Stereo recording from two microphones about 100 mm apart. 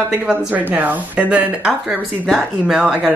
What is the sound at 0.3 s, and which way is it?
Speech, 15° right (ahead or behind).